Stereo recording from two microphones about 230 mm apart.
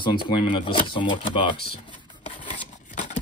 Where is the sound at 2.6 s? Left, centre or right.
Left.